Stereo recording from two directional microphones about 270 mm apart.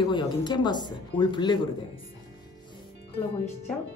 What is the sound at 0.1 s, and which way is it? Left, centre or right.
Speech, centre.